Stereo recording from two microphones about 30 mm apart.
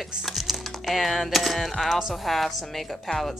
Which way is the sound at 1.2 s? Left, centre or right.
Centre.